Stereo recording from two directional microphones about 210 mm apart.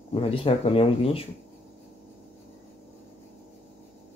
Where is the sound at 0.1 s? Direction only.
25° left (ahead or behind).